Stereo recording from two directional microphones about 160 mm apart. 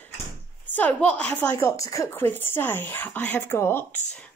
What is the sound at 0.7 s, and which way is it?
A woman's voice, 10° left (ahead or behind).